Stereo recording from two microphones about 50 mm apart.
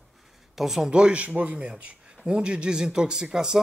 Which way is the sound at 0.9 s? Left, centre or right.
Right.